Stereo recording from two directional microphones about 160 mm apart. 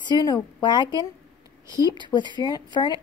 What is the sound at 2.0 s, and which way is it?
A woman's voice, 30° left (ahead or behind).